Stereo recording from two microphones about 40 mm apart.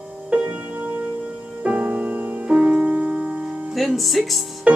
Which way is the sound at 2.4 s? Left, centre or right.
Right.